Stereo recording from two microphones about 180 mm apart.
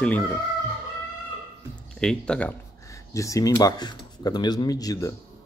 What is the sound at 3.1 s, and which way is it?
Speech, 15° left (ahead or behind).